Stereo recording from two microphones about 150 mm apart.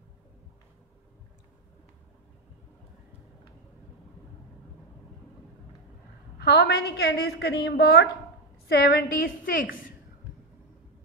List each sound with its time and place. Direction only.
6.4 s a woman's voice: 90° left; by 9.9 s 70° left (ahead or behind)